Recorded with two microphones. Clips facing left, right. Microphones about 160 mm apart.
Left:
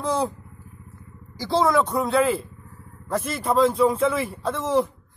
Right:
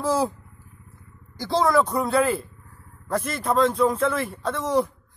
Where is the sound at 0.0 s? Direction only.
5° right (ahead or behind).